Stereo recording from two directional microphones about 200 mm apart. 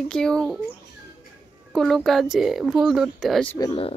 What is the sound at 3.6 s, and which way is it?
Speech, 25° left (ahead or behind).